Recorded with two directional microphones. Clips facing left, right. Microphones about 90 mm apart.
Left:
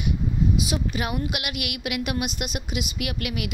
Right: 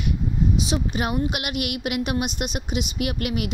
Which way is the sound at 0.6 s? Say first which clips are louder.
Right 2 dB; 30° right (ahead or behind).